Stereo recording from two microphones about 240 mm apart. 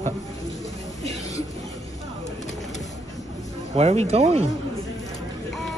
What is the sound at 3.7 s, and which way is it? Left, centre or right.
Speech, right.